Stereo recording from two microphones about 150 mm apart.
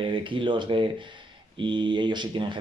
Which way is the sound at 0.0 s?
35° right (ahead or behind).